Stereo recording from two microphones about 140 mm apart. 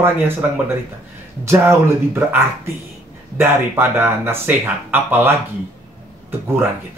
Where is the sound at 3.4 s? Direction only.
15° right (ahead or behind).